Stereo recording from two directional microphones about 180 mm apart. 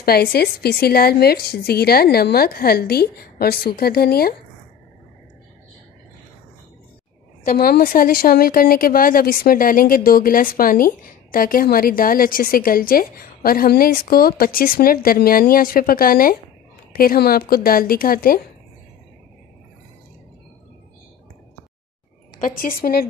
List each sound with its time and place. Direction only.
0.0 s a woman's voice: 60° left (ahead or behind)
7.4 s a woman's voice: 55° left (ahead or behind)
22.4 s a woman's voice: 50° left (ahead or behind)